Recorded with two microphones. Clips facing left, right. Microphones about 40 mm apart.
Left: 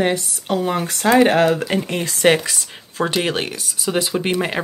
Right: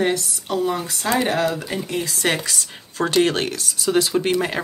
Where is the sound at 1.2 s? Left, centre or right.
Left.